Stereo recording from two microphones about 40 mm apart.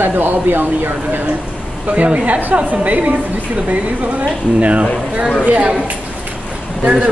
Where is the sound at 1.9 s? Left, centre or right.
Right.